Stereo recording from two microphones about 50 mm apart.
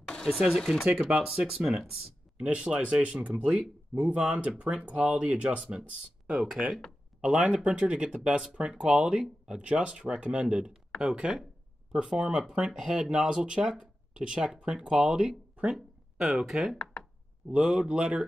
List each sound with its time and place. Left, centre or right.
0.0 s a sound: centre
0.6 s speech: centre
0.8 s speech: centre
2.4 s speech: right; by 16.7 s centre
17.0 s a sound: centre
17.5 s speech: centre